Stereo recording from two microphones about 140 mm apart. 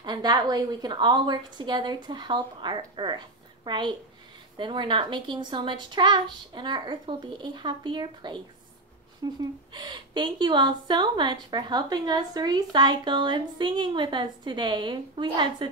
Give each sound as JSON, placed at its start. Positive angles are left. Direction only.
{"t": 0.0, "sound": "a woman's voice", "side_deg": -30}